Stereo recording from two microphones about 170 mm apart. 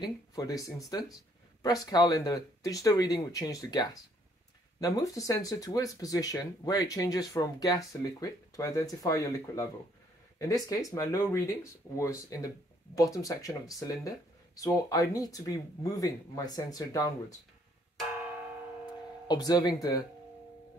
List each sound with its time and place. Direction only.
0.0 s speech: 20° left (ahead or behind)
11.0 s speech: 20° left (ahead or behind)
19.2 s speech: 25° left (ahead or behind)